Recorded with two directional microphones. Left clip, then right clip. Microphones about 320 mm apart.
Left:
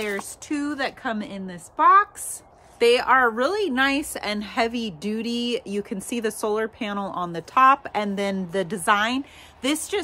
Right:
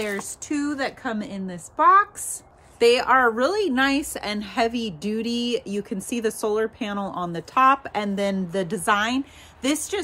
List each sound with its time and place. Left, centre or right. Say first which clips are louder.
0.0 s a woman's voice: even; centre